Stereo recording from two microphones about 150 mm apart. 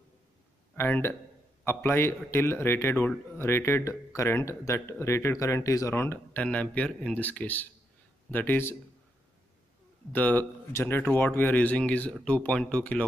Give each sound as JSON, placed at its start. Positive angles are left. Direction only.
{"t": 0.7, "sound": "speech", "side_deg": 15}
{"t": 10.1, "sound": "speech", "side_deg": 10}